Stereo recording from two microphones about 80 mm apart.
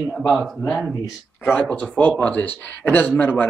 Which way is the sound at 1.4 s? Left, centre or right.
Left.